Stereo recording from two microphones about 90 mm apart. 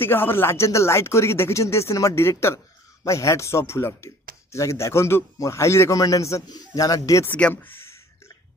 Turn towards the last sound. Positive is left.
turn(degrees=25)  # may be behind; listen again after turning